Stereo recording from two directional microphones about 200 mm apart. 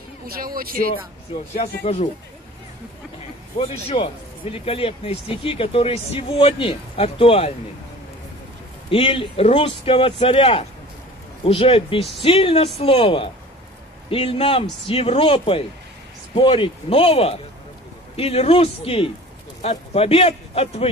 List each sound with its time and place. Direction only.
0.3 s speech: 45° right (ahead or behind)
1.5 s speech: 35° left (ahead or behind)
3.5 s speech: 25° left (ahead or behind)
8.9 s speech: 30° left (ahead or behind)